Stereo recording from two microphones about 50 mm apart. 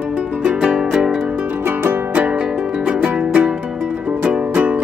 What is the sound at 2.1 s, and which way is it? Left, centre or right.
Music, right.